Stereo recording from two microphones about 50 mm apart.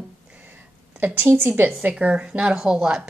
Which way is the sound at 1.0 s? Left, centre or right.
Right.